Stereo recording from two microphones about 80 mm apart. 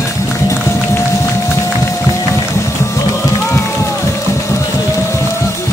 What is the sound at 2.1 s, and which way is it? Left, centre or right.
Music, left.